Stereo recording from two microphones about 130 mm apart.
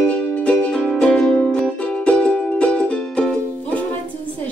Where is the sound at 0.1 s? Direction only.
10° left (ahead or behind).